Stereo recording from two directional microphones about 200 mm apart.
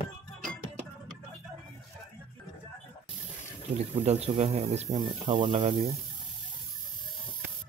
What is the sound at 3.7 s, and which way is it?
Speech, 30° right (ahead or behind).